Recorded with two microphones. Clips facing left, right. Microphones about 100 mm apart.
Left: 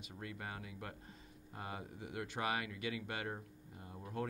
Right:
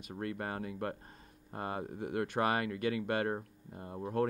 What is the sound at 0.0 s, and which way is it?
Speech, 55° right (ahead or behind).